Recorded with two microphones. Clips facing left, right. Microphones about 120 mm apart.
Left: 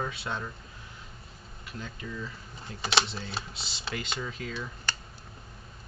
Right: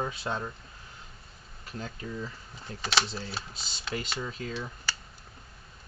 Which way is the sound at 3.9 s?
25° right (ahead or behind).